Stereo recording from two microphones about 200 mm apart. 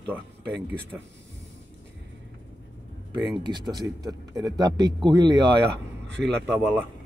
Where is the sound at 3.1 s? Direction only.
20° right (ahead or behind).